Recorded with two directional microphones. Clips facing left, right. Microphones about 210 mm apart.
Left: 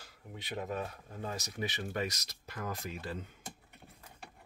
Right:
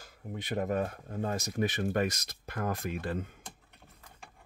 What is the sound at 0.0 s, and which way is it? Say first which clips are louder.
Speech: right 7 dB; 50° right (ahead or behind).